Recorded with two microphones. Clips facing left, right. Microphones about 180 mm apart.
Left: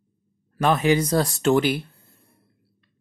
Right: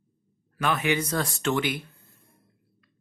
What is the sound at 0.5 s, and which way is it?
Speech, 40° left (ahead or behind).